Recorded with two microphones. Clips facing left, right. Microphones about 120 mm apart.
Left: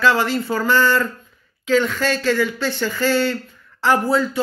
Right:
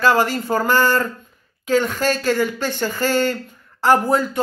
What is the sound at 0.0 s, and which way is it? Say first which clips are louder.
Speech: right 1 dB; 45° right (ahead or behind).